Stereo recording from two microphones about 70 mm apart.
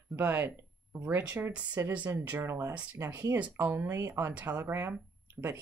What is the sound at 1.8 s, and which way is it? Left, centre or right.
Speech, right.